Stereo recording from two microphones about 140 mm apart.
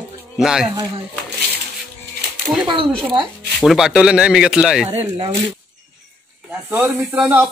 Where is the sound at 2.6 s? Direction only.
35° right (ahead or behind).